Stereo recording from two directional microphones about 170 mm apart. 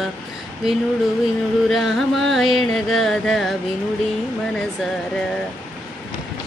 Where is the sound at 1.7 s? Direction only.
Centre (ahead or behind).